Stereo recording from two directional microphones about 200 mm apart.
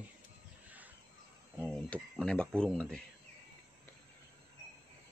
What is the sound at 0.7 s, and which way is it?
Music, 10° right (ahead or behind).